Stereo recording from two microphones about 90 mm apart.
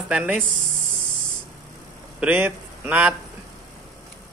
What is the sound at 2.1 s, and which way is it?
A man's voice, 20° right (ahead or behind).